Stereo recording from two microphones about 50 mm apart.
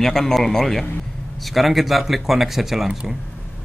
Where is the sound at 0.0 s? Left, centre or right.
Centre.